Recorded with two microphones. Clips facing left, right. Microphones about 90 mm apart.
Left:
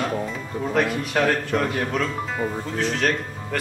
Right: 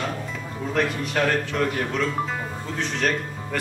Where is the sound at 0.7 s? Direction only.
5° left (ahead or behind).